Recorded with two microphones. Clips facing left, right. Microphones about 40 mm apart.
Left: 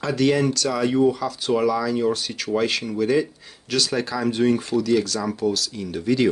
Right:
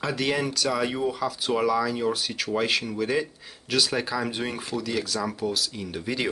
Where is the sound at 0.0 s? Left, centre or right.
Centre.